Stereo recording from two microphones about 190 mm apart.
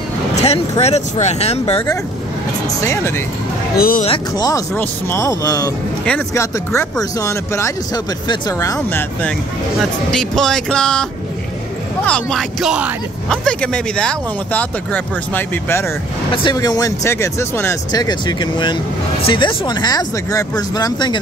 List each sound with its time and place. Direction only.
0.4 s speech: 35° left (ahead or behind)
2.8 s speech: 15° left (ahead or behind)
3.7 s speech: 50° left (ahead or behind)
4.0 s speech: 25° left (ahead or behind)
9.8 s speech: 5° left (ahead or behind)
16.3 s speech: 20° left (ahead or behind)